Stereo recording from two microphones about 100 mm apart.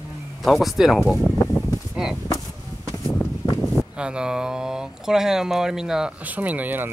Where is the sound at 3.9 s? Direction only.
10° right (ahead or behind).